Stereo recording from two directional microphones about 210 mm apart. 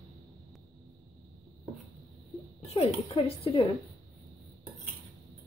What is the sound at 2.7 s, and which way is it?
Speech, 30° left (ahead or behind).